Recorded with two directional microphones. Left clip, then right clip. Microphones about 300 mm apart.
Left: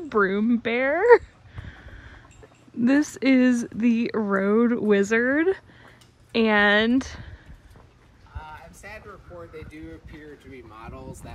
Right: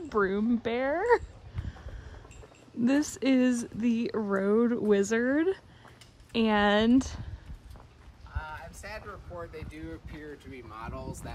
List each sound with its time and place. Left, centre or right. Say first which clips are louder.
0.1 s speech: left 6 dB; centre
2.8 s speech: left 6 dB; centre
8.4 s speech: even; centre